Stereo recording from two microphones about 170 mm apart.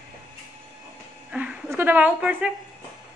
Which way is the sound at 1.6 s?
10° right (ahead or behind).